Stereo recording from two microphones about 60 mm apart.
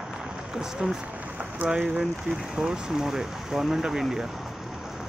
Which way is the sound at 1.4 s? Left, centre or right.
Right.